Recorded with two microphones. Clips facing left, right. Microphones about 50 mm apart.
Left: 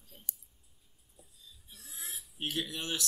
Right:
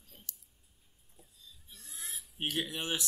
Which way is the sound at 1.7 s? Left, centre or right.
Centre.